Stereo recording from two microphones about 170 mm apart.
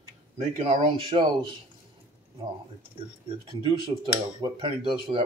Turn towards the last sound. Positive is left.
turn(degrees=-30)  # may be behind; listen again after turning